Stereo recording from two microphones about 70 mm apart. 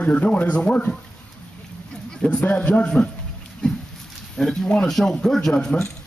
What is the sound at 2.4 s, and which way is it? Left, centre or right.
Speech, centre.